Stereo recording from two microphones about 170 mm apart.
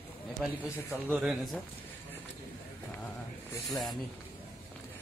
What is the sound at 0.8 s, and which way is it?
Speech, 5° right (ahead or behind).